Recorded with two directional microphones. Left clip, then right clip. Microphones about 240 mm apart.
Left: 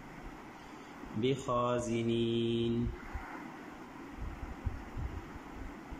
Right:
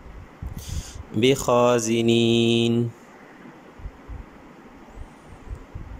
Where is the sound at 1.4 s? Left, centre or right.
Right.